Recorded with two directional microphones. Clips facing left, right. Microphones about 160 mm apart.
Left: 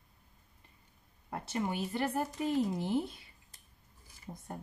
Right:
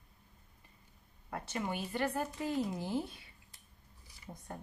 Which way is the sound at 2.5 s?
25° left (ahead or behind).